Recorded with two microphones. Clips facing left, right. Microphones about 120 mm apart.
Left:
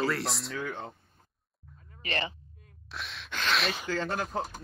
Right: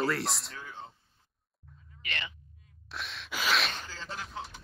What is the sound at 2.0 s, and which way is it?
Speech, 35° left (ahead or behind).